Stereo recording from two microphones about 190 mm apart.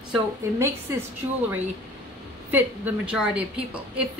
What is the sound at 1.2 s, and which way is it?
Speech, 20° right (ahead or behind).